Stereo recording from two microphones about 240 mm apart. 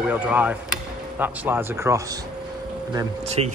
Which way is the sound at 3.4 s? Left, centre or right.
Right.